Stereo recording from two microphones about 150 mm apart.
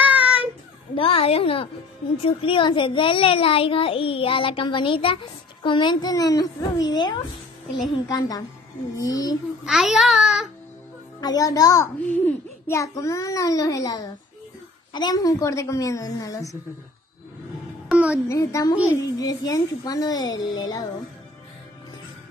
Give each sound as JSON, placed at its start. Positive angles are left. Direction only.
{"t": 0.0, "sound": "child singing", "side_deg": -10}
{"t": 0.9, "sound": "a child's voice", "side_deg": 35}
{"t": 9.7, "sound": "a child's voice", "side_deg": 0}
{"t": 11.1, "sound": "a child's voice", "side_deg": 25}
{"t": 17.8, "sound": "music", "side_deg": -10}
{"t": 18.3, "sound": "a child's voice", "side_deg": 20}